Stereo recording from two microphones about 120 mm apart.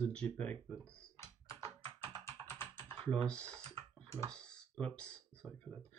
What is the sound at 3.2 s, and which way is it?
Speech, 10° left (ahead or behind).